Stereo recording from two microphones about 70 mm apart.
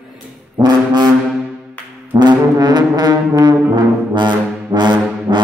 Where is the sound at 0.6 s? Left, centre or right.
Right.